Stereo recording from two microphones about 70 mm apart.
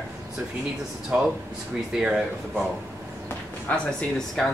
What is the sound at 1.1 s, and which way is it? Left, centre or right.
Speech, centre.